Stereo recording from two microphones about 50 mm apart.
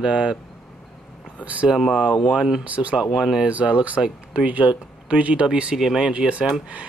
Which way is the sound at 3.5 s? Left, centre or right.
Right.